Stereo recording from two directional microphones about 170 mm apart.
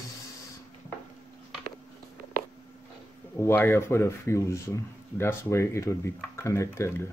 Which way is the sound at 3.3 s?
15° left (ahead or behind).